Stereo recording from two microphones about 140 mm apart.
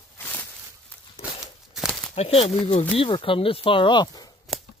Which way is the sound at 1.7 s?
Centre (ahead or behind).